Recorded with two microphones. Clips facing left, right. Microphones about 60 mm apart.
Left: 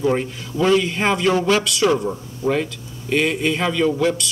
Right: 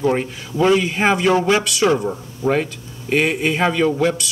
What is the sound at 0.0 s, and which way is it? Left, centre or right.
A man's voice, centre.